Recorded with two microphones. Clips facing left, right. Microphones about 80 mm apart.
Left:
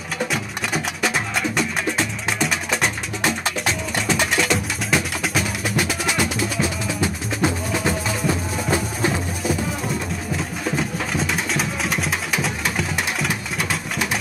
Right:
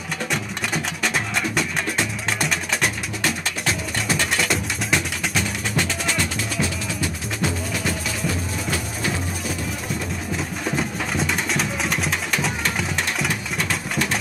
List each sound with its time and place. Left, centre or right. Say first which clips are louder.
0.3 s music: left 1 dB; centre
4.1 s music: left 2 dB; centre
7.0 s music: left 5 dB; left
10.3 s music: left 1 dB; centre